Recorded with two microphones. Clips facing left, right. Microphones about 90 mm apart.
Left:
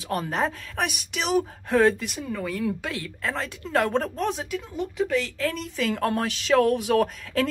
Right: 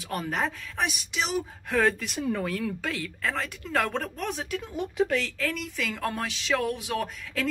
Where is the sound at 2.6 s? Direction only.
15° left (ahead or behind).